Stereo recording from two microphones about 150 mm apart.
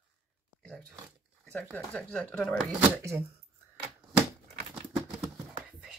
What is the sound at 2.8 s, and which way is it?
Speech, 15° right (ahead or behind).